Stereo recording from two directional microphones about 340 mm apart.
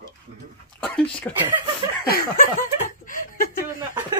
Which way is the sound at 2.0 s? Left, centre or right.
Left.